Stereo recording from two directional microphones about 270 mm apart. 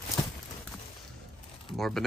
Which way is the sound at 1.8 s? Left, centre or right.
Centre.